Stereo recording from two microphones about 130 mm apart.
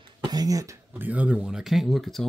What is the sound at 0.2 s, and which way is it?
Speech, 30° right (ahead or behind).